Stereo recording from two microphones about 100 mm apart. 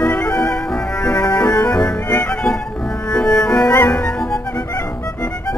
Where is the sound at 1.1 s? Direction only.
30° left (ahead or behind).